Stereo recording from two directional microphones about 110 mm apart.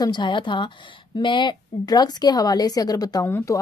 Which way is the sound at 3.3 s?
20° left (ahead or behind).